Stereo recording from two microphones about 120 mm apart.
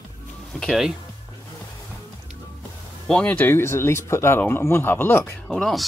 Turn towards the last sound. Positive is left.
turn(degrees=0)  # may be behind; listen again after turning